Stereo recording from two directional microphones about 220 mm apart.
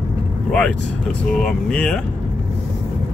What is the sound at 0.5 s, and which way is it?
Speech, 5° left (ahead or behind).